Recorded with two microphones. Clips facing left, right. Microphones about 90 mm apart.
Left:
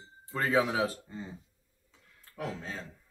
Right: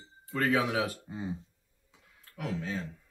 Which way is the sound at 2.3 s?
35° left (ahead or behind).